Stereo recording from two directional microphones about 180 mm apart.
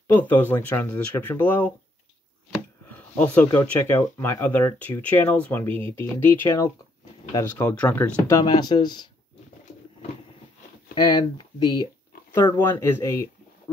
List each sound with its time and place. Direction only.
0.1 s speech: 10° left (ahead or behind)
3.2 s speech: 10° left (ahead or behind)
8.3 s speech: 20° left (ahead or behind)
11.0 s speech: 20° left (ahead or behind)
12.4 s speech: 10° left (ahead or behind)